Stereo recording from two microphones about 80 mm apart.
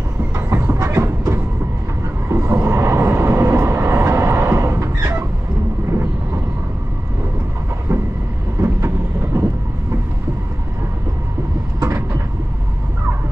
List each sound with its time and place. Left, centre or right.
0.5 s train: right
2.2 s vehicle: right
8.6 s vehicle: right
11.8 s vehicle: right